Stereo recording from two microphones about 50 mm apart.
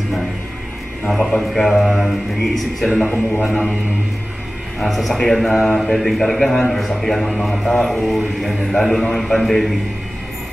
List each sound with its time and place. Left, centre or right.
1.0 s speech: centre
4.7 s speech: centre
5.7 s speech: centre
5.9 s a man's voice: centre